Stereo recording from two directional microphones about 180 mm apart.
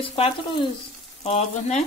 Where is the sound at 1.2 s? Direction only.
35° left (ahead or behind).